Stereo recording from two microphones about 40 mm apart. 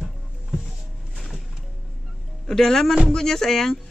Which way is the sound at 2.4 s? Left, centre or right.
Centre.